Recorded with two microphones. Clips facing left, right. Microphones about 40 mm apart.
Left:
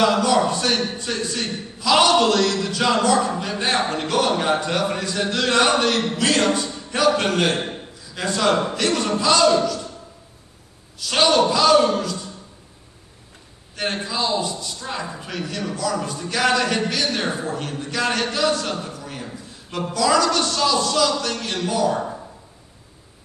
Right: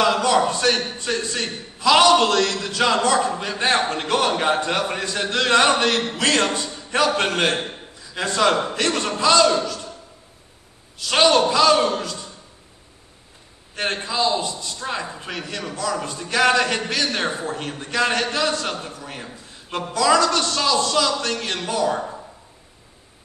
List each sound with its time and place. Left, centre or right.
0.2 s a sound: right
0.5 s a man's voice: right
11.0 s speech: right
13.7 s a man's voice: right